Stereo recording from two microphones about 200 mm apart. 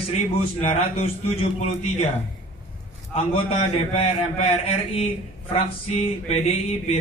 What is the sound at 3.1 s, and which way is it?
A man's voice, 30° left (ahead or behind).